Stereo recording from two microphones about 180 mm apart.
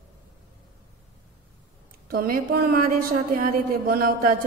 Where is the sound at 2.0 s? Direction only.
55° right (ahead or behind).